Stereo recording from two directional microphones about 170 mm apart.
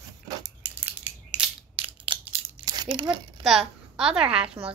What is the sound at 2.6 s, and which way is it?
Crumpling, 25° right (ahead or behind).